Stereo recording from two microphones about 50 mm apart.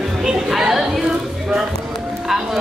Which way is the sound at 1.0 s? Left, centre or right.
Centre.